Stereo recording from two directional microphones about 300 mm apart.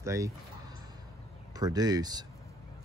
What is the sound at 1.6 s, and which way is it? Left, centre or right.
Speech, centre.